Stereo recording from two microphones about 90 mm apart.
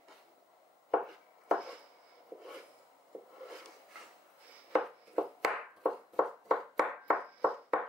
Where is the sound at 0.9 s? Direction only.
5° right (ahead or behind).